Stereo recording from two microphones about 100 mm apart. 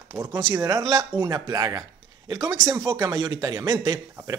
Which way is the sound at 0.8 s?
45° right (ahead or behind).